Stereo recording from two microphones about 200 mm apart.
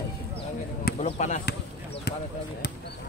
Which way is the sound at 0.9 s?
35° left (ahead or behind).